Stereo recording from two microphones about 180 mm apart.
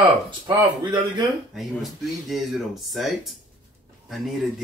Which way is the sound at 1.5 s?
Centre (ahead or behind).